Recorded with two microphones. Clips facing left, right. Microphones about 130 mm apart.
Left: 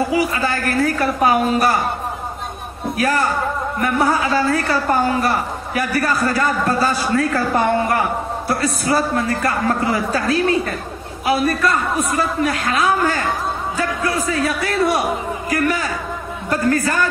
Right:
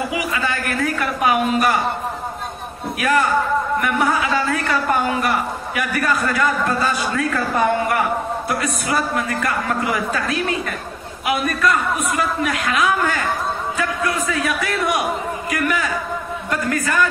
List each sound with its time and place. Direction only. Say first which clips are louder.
0.1 s a man's voice: left 4 dB; 35° left (ahead or behind)
3.0 s a man's voice: right 1 dB; 35° left (ahead or behind)